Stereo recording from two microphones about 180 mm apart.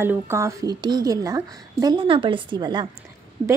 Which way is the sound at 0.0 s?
15° right (ahead or behind).